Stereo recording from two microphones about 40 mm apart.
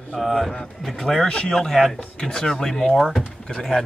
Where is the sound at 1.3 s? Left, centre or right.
Centre.